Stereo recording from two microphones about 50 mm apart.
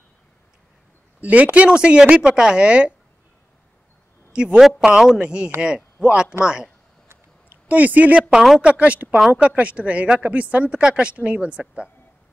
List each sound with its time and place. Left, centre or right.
1.2 s speech: right
4.3 s a woman's voice: right
7.4 s speech: right
8.2 s speech: centre
8.5 s speech: right